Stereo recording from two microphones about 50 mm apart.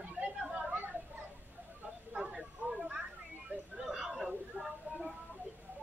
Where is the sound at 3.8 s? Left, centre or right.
Centre.